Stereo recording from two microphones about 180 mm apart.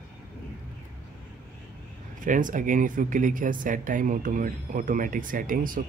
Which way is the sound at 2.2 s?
45° right (ahead or behind).